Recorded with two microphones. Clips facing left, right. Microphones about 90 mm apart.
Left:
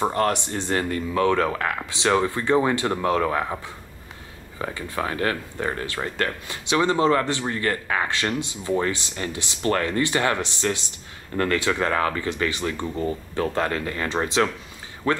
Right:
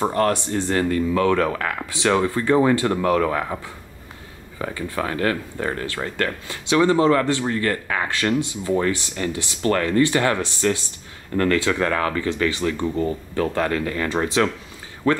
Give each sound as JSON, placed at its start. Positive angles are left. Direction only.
{"t": 0.1, "sound": "speech", "side_deg": 20}